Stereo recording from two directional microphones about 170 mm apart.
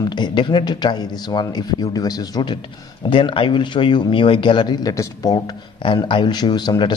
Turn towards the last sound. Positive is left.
turn(degrees=25)  # may be behind; listen again after turning